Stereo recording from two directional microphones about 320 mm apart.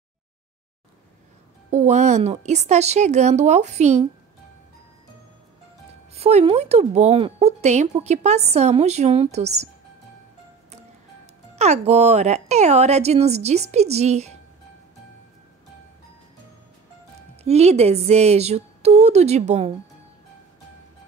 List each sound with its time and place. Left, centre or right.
1.7 s speech: right
6.1 s speech: centre
11.5 s speech: centre
17.4 s speech: centre